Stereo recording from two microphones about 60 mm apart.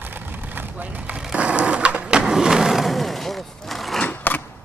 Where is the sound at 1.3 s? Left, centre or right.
Centre.